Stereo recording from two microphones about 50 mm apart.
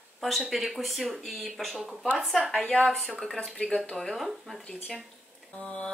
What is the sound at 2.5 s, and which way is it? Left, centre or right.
Speech, centre.